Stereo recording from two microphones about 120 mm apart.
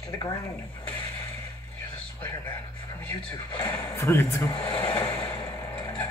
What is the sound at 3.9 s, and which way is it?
Speech, 25° left (ahead or behind).